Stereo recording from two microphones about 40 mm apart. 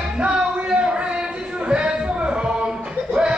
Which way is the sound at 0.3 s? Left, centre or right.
Right.